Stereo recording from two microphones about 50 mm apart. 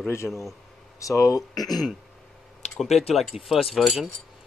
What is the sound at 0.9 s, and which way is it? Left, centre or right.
Speech, left.